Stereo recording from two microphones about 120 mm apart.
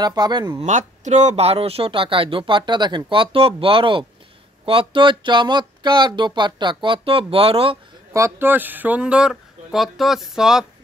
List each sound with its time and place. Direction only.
0.0 s speech: 35° right (ahead or behind)
0.6 s speech: 80° right; by 7.8 s 50° right (ahead or behind)
8.1 s speech: 20° right (ahead or behind); by 10.7 s 5° right (ahead or behind)